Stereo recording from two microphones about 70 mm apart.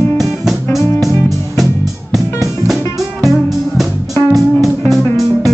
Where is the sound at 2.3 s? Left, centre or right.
Centre.